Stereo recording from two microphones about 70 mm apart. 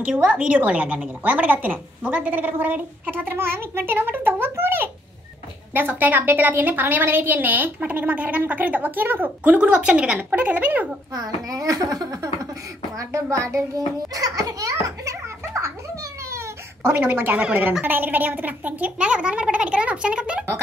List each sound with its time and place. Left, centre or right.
0.1 s a woman's voice: centre
11.1 s a child's voice: right
12.9 s a child's voice: right; by 20.4 s centre